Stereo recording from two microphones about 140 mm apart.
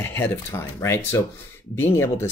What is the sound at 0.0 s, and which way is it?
Speech, 15° left (ahead or behind).